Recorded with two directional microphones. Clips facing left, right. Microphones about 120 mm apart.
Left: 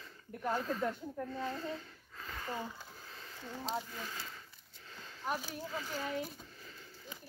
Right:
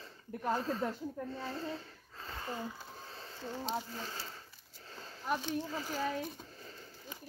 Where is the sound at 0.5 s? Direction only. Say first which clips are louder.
Left 1 dB; 30° right (ahead or behind).